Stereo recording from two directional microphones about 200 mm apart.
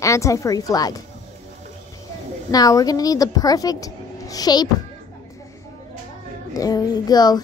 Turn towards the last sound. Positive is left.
turn(degrees=20)  # may be behind; listen again after turning